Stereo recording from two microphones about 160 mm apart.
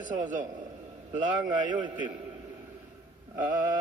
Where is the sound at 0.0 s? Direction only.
55° right (ahead or behind).